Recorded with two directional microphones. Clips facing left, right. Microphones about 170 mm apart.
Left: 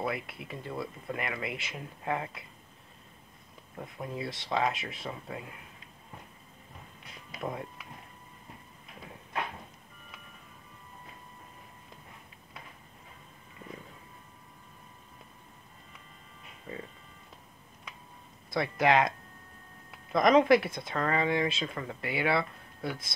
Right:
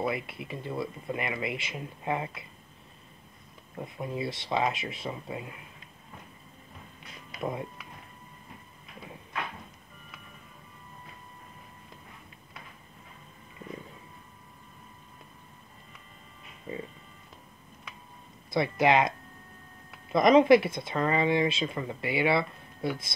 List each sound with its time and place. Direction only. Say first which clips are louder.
0.0 s speech: right 3 dB; 5° right (ahead or behind)
3.7 s speech: right 3 dB; 10° right (ahead or behind)
16.7 s a sound: right 4 dB; 15° right (ahead or behind)
18.5 s speech: right 2 dB; 5° right (ahead or behind)